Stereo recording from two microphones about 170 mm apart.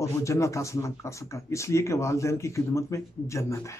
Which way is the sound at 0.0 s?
15° left (ahead or behind).